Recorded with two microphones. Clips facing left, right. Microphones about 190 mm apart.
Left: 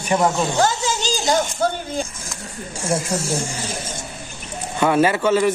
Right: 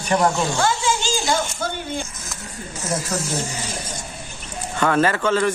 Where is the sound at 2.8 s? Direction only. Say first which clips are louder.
Left 3 dB; 30° left (ahead or behind).